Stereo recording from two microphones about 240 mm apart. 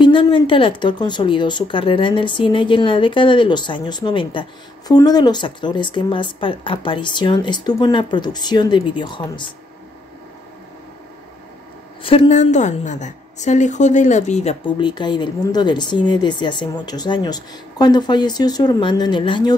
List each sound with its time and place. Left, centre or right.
0.0 s a woman's voice: left
12.0 s a woman's voice: left